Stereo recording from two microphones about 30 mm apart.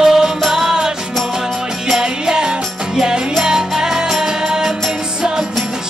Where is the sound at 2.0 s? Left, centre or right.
Right.